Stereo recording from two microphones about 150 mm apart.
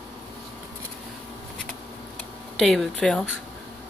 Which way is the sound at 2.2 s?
Centre (ahead or behind).